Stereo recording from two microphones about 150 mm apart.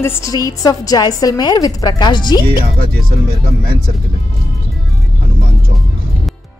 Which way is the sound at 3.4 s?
75° right (ahead or behind).